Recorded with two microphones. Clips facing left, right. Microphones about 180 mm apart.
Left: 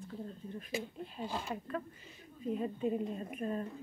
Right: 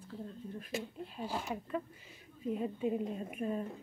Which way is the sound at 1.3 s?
15° right (ahead or behind).